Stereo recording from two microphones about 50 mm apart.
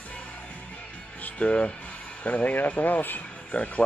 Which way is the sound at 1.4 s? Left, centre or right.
Centre.